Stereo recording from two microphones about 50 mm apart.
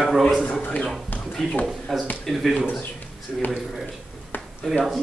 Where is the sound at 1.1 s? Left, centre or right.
Left.